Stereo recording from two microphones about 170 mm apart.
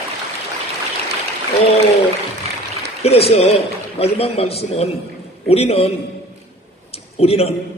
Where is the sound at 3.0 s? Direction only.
35° left (ahead or behind).